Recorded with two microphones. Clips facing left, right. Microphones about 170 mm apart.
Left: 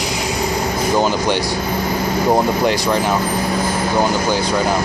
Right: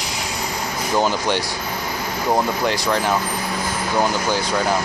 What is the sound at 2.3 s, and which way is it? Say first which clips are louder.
Speech: left 3 dB; 20° left (ahead or behind).